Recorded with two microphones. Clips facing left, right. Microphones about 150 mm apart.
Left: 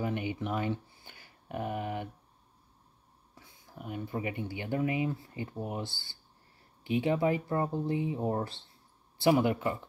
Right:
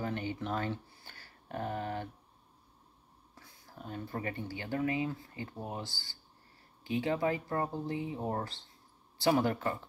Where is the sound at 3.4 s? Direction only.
15° left (ahead or behind).